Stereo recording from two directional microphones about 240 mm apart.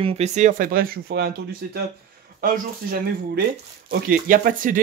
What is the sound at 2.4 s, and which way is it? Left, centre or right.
Speech, right.